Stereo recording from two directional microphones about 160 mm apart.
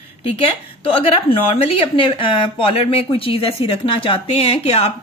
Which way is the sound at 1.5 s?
35° left (ahead or behind).